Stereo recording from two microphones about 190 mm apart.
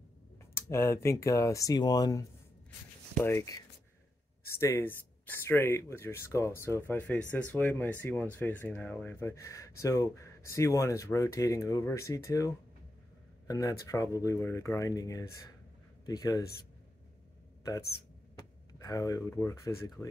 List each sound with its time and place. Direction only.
0.6 s speech: 15° left (ahead or behind)
3.3 s a man's voice: 15° left (ahead or behind)
18.8 s speech: 20° left (ahead or behind)